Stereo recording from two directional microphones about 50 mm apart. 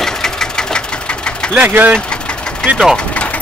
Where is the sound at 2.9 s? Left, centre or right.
Left.